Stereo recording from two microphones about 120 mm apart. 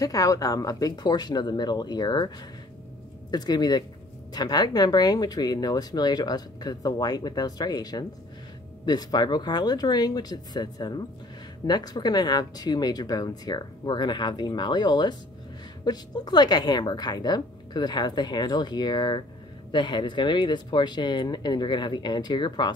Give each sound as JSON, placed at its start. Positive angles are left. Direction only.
{"t": 0.0, "sound": "speech", "side_deg": 30}